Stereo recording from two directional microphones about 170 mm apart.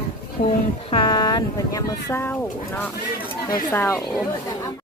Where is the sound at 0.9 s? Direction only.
25° left (ahead or behind).